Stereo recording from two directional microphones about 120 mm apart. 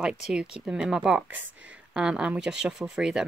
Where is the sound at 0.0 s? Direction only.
5° right (ahead or behind).